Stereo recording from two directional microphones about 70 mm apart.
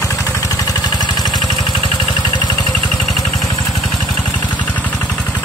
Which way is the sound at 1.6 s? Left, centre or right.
Left.